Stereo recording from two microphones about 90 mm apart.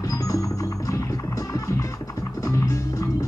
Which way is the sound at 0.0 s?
40° left (ahead or behind).